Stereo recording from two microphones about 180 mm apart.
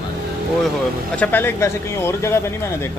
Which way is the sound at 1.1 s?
10° left (ahead or behind).